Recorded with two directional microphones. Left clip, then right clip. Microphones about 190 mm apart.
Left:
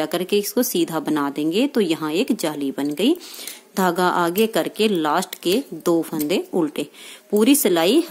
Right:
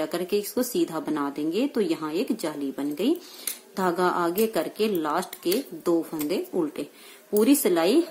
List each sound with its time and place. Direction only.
0.0 s a woman's voice: 40° left (ahead or behind)